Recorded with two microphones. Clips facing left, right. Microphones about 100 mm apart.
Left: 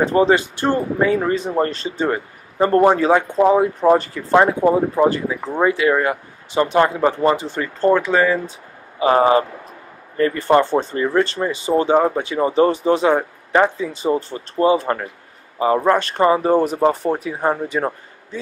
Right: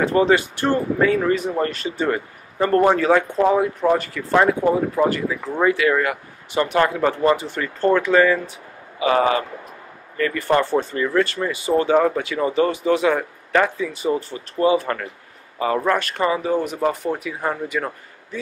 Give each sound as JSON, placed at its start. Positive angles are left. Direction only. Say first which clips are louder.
{"t": 0.0, "sound": "speech", "louder": "left 2 dB", "side_deg": 25}
{"t": 9.0, "sound": "a man's voice", "louder": "left 4 dB", "side_deg": 30}
{"t": 16.3, "sound": "speech", "louder": "left 5 dB", "side_deg": 45}
{"t": 16.8, "sound": "a man's voice", "louder": "left 4 dB", "side_deg": 30}